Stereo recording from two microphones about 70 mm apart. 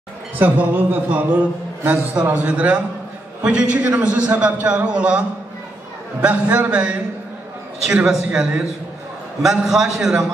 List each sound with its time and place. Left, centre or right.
0.4 s a man's voice: right
6.2 s a man's voice: centre
9.4 s a man's voice: centre